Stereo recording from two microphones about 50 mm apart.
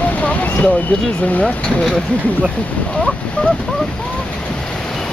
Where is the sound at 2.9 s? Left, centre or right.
Centre.